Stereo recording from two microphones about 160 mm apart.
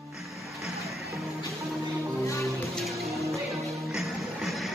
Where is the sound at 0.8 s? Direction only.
Centre (ahead or behind).